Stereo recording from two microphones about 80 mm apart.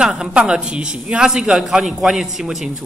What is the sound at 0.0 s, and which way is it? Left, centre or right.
A man's voice, centre.